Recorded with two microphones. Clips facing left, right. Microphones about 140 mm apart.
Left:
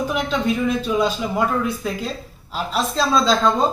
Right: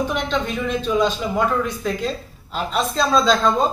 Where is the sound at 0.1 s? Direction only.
5° left (ahead or behind).